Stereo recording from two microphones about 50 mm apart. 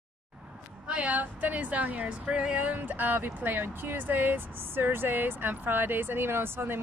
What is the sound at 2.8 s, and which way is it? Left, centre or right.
Speech, right.